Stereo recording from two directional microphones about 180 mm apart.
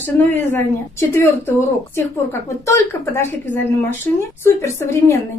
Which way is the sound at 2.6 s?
15° left (ahead or behind).